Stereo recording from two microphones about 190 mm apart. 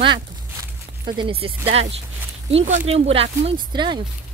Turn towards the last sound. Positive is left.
turn(degrees=-25)  # may be behind; listen again after turning